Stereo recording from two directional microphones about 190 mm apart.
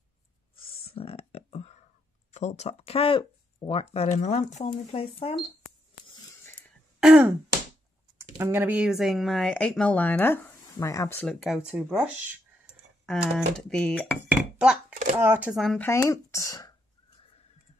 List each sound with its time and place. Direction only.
0.8 s a sound: 30° left (ahead or behind)
2.3 s speech: 35° left (ahead or behind)
6.4 s a sound: 10° left (ahead or behind)
7.0 s throat clearing: 5° right (ahead or behind)
8.2 s speech: 15° right (ahead or behind); by 11.2 s 15° left (ahead or behind)
11.2 s speech: centre (ahead or behind)
13.0 s speech: centre (ahead or behind)
15.9 s speech: 15° left (ahead or behind)